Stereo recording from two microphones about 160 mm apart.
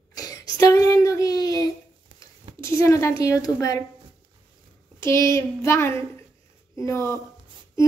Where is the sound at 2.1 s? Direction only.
35° right (ahead or behind).